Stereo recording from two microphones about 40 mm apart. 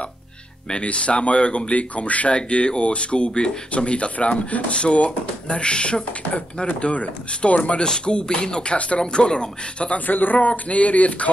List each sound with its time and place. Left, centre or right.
0.8 s speech: left
9.9 s speech: left